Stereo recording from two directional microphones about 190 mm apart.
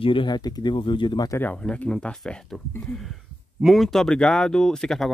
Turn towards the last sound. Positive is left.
turn(degrees=0)  # may be behind; listen again after turning